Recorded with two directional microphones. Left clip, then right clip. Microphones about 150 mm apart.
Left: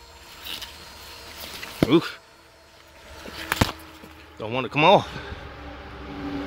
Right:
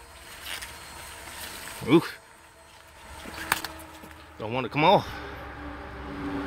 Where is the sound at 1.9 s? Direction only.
15° right (ahead or behind).